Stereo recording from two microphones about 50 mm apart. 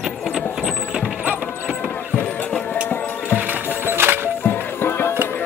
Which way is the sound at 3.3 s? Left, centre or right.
Right.